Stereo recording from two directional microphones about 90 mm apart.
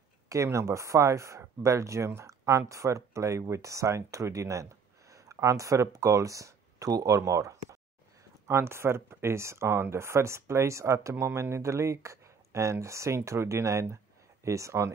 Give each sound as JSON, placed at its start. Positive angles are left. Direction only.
{"t": 0.3, "sound": "speech", "side_deg": -35}